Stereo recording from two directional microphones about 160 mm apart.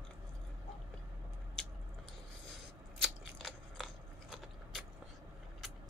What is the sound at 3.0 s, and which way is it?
Biting, centre (ahead or behind).